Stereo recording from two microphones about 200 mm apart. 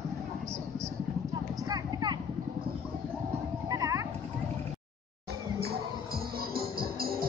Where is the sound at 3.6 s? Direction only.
15° right (ahead or behind).